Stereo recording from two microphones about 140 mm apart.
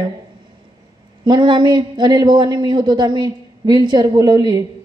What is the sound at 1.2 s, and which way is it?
Speech, 35° right (ahead or behind).